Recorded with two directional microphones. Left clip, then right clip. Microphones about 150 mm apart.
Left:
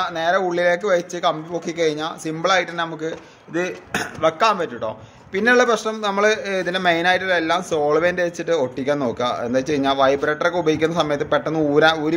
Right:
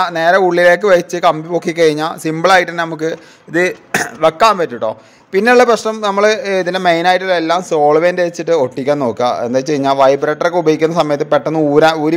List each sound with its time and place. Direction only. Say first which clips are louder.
0.0 s speech: right 9 dB; 55° right (ahead or behind); by 12.1 s 40° right (ahead or behind)